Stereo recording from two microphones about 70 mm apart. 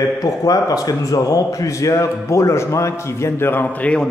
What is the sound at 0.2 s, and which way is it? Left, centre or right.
A man's voice, left.